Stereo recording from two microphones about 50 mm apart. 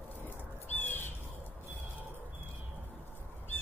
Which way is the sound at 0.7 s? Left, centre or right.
Left.